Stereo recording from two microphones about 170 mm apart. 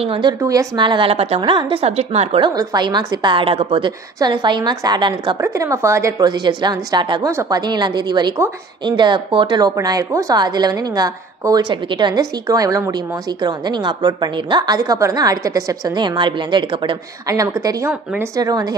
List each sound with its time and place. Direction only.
0.0 s a woman's voice: 30° right (ahead or behind)
2.5 s a woman's voice: 20° right (ahead or behind)